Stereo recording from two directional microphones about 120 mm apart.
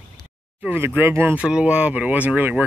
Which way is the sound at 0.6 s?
15° right (ahead or behind).